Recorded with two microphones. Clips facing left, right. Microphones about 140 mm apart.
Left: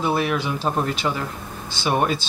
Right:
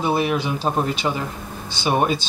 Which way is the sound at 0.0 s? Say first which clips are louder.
Right 1 dB; 20° right (ahead or behind).